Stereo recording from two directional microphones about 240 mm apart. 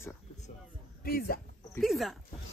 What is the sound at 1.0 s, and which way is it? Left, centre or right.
Speech, left.